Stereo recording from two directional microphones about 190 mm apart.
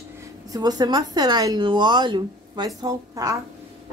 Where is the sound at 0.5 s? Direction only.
20° right (ahead or behind).